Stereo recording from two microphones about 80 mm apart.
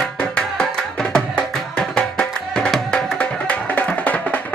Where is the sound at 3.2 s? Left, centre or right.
Centre.